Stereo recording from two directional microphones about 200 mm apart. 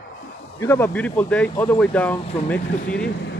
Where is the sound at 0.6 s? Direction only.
10° left (ahead or behind).